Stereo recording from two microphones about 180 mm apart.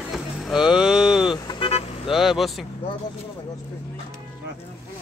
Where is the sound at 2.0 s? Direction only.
Centre (ahead or behind).